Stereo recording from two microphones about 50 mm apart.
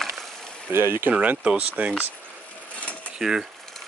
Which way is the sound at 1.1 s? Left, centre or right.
Right.